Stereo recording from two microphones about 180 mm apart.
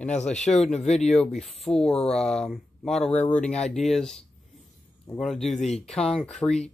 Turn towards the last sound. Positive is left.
turn(degrees=5)  # may be behind; listen again after turning